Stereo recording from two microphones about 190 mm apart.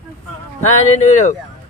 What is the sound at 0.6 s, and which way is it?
Speech, 40° left (ahead or behind).